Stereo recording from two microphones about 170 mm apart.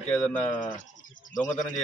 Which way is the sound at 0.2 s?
5° left (ahead or behind).